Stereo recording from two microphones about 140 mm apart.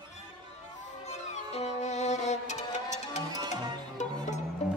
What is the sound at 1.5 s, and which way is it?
Music, 55° left (ahead or behind).